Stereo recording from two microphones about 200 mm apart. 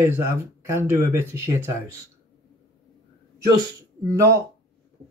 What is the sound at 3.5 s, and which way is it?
Speech, 20° right (ahead or behind).